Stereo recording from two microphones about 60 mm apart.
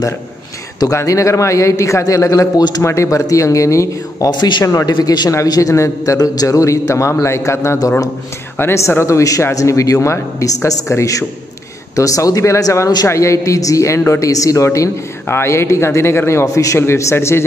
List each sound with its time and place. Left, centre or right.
0.9 s a man's voice: left
2.8 s a man's voice: left
5.3 s a man's voice: left
10.4 s a man's voice: left
14.3 s a man's voice: left
15.2 s a man's voice: left